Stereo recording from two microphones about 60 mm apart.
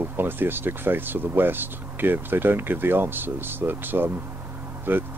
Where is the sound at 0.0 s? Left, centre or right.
Right.